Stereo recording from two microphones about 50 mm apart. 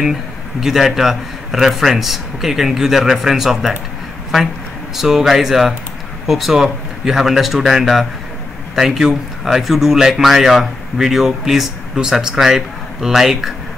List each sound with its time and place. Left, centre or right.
0.6 s speech: centre
4.9 s speech: centre